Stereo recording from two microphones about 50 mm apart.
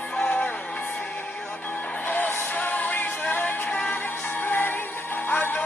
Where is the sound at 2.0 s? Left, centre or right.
Left.